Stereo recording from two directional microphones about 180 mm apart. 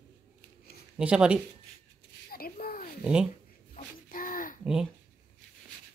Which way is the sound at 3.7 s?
50° left (ahead or behind).